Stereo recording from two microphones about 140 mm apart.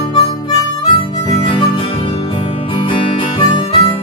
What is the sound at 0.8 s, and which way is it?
Harmonica, 35° left (ahead or behind).